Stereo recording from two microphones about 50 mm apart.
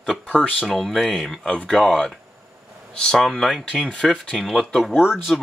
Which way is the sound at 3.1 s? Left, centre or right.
Centre.